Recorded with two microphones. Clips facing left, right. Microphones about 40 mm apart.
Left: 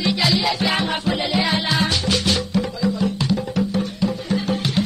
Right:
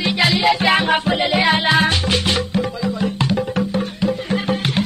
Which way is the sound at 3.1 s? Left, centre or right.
Right.